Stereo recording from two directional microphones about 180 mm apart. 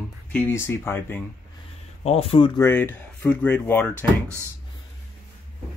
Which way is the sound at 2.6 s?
10° left (ahead or behind).